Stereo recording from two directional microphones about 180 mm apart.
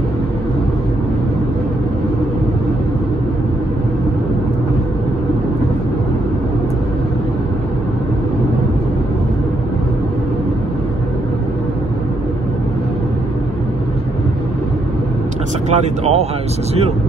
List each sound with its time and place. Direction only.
15.7 s speech: 40° right (ahead or behind)